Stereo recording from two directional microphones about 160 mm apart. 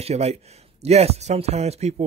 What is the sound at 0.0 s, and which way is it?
Speech, 40° right (ahead or behind).